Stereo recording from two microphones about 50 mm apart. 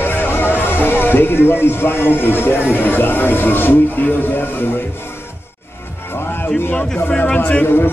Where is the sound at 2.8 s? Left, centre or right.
Left.